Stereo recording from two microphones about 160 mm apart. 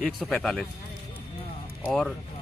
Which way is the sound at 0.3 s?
5° left (ahead or behind).